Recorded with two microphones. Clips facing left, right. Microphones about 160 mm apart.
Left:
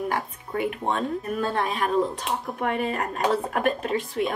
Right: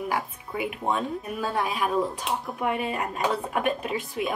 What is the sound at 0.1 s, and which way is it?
A woman's voice, 5° right (ahead or behind).